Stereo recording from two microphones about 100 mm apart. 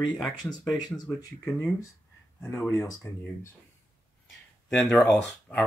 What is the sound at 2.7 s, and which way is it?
Speech, 30° left (ahead or behind).